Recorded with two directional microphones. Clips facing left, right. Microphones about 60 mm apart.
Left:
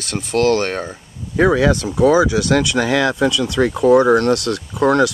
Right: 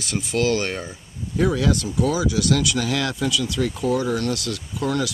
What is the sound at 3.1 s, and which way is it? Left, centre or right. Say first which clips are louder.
Speech: left 7 dB; left.